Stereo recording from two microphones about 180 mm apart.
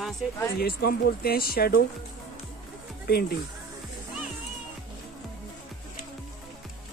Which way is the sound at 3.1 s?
60° left (ahead or behind).